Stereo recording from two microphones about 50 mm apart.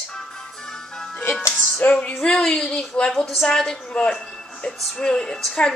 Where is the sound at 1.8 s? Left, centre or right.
Left.